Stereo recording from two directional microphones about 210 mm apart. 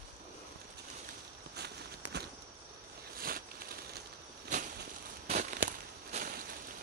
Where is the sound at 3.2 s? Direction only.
45° right (ahead or behind).